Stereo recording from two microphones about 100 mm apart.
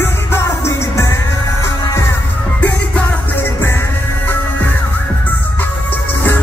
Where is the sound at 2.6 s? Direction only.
15° left (ahead or behind).